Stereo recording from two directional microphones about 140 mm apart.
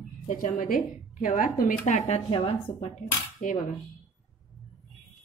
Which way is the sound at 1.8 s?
50° left (ahead or behind).